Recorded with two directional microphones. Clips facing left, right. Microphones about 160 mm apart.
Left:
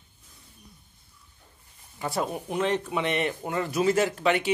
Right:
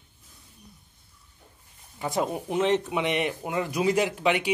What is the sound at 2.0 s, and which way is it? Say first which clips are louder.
A man's voice: right 2 dB; 20° right (ahead or behind).